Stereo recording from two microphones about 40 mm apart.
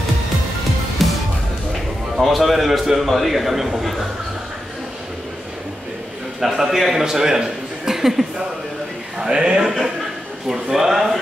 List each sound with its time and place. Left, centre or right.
1.0 s music: centre
2.1 s a man's voice: centre
6.4 s a man's voice: centre
9.2 s speech: centre